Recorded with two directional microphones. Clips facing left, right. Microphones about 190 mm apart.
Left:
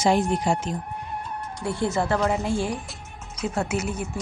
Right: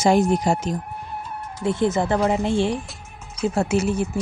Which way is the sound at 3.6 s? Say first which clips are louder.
Right 6 dB; 30° right (ahead or behind).